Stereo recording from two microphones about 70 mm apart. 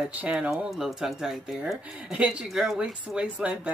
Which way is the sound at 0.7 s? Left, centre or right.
Centre.